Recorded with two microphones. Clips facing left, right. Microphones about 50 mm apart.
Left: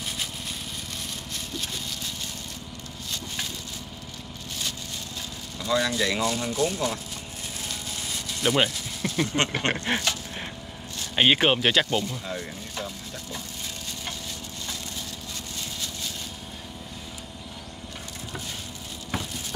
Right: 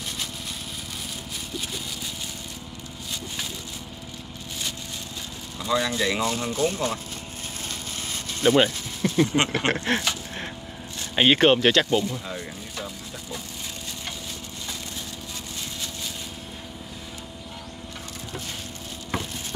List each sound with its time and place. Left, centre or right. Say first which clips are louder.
5.6 s speech: even; centre
6.2 s speech: right 1 dB; right
8.1 s a sound: right 5 dB; right
8.6 s speech: right 4 dB; right
9.9 s a sound: right 1 dB; centre
11.1 s speech: right 3 dB; centre
12.1 s music: even; centre